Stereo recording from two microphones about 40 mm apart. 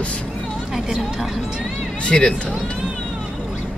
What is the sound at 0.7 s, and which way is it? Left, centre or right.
Speech, centre.